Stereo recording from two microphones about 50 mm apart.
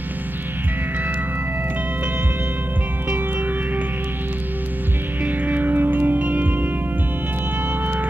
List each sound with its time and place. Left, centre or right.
5.2 s music: right